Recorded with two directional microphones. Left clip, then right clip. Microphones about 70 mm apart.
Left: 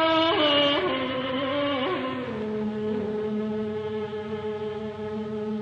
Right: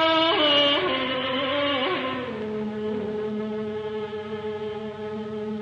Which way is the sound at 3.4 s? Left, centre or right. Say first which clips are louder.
Even; left.